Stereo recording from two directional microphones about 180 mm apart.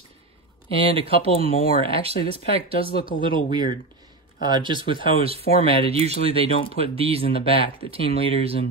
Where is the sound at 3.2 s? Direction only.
25° right (ahead or behind).